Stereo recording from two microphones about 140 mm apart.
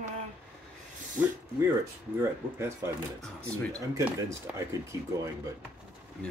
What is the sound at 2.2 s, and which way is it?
Speech, 20° right (ahead or behind).